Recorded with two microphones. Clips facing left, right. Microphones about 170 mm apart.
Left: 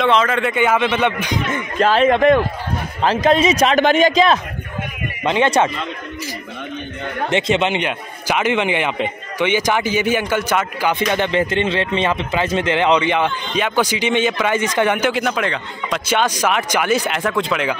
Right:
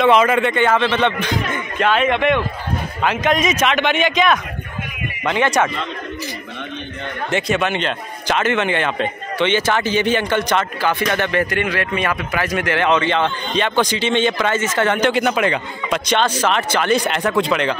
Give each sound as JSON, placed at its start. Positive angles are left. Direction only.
{"t": 0.0, "sound": "a man's voice", "side_deg": -10}
{"t": 0.5, "sound": "a man's voice", "side_deg": 10}
{"t": 1.5, "sound": "a man's voice", "side_deg": 35}
{"t": 5.2, "sound": "speech", "side_deg": 20}
{"t": 7.2, "sound": "a man's voice", "side_deg": 20}
{"t": 16.1, "sound": "a man's voice", "side_deg": 10}